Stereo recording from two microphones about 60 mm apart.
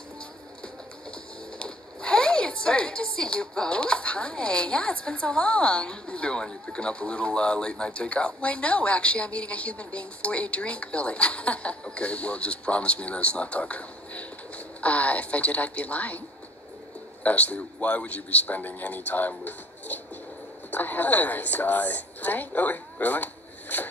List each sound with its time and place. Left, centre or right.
1.1 s speech: centre
17.2 s a woman's voice: left